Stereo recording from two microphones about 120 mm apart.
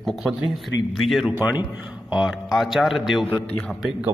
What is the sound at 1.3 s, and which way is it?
A man's voice, 15° right (ahead or behind).